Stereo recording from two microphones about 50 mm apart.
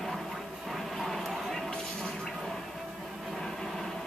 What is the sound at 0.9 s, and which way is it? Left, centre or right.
Bow-wow, centre.